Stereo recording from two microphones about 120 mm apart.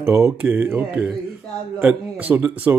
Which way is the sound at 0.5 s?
15° right (ahead or behind).